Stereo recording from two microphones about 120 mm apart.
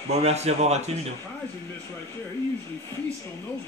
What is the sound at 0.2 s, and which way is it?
Speech, 65° right (ahead or behind).